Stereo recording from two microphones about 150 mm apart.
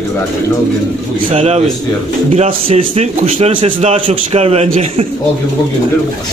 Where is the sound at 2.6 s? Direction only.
40° right (ahead or behind).